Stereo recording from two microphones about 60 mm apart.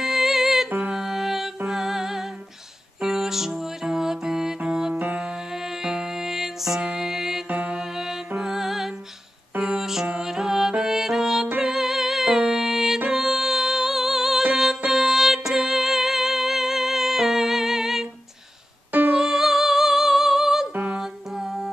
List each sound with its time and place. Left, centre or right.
0.0 s music: centre
4.9 s music: right
5.8 s music: centre
7.4 s music: right
7.9 s music: centre
18.9 s music: right
19.1 s music: centre
20.7 s music: right
21.0 s music: centre